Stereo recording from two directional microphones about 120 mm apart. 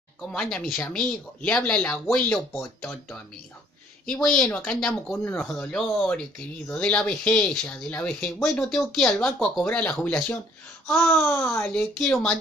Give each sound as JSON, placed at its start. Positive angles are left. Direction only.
{"t": 0.2, "sound": "speech", "side_deg": 5}
{"t": 4.0, "sound": "speech", "side_deg": 5}
{"t": 5.1, "sound": "babbling", "side_deg": 20}
{"t": 5.4, "sound": "speech", "side_deg": 5}
{"t": 10.9, "sound": "babbling", "side_deg": 20}
{"t": 11.7, "sound": "speech", "side_deg": 5}